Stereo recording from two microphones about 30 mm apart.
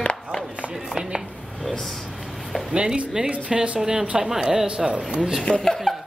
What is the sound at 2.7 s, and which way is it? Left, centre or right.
Speech, right.